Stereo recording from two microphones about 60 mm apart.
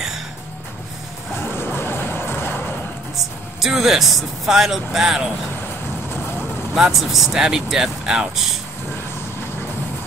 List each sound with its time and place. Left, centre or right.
1.4 s music: left
3.5 s speech: centre
6.7 s speech: centre